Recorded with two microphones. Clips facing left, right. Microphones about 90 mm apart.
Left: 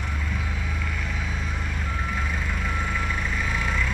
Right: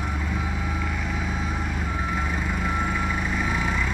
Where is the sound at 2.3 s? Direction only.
5° right (ahead or behind).